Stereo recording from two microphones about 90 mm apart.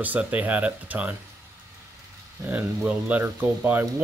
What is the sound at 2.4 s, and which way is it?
Speech, 20° right (ahead or behind).